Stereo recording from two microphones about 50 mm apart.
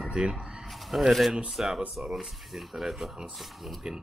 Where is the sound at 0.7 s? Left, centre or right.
Centre.